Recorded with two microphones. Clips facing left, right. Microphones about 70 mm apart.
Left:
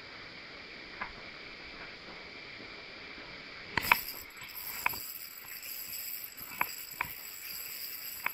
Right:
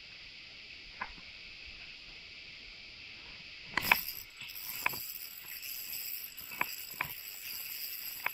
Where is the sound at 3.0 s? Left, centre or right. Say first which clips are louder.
Left 6 dB; left.